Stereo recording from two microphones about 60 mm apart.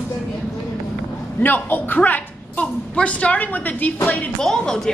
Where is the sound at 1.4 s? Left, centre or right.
Left.